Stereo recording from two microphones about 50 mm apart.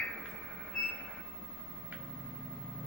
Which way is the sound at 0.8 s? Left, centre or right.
Centre.